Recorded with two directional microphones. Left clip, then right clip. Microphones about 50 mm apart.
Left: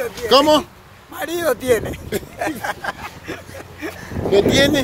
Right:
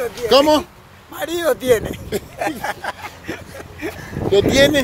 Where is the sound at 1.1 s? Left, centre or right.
Left.